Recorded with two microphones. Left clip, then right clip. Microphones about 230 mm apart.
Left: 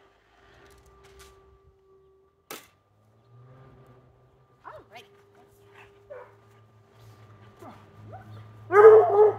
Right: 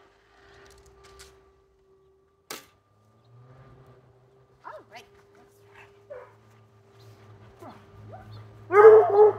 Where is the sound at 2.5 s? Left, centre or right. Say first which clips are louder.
Right 2 dB; right.